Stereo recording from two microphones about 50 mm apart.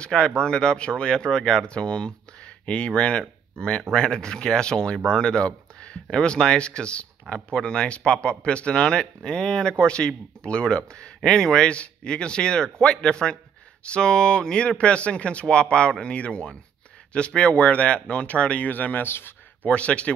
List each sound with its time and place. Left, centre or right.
0.0 s speech: centre; by 19.0 s left
19.0 s speech: left
19.6 s speech: left